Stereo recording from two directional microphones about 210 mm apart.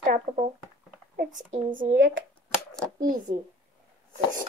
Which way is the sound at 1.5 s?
65° right (ahead or behind).